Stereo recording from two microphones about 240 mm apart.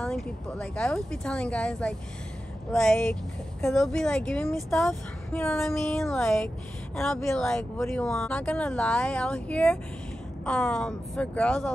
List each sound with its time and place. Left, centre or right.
0.0 s a woman's voice: centre